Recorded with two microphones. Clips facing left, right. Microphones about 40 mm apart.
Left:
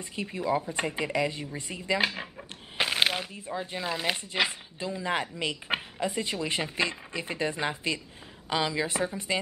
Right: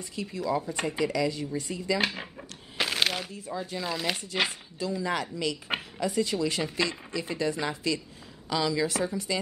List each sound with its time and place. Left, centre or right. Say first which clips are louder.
0.0 s a woman's voice: left 1 dB; left
0.6 s speech: right 1 dB; centre
2.0 s speech: left 1 dB; centre
2.8 s a sound: left 1 dB; centre
3.3 s speech: even; left
3.8 s a woman's voice: left 1 dB; centre